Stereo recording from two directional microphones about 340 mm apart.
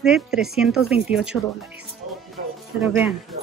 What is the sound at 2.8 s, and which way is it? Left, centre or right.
Speech, centre.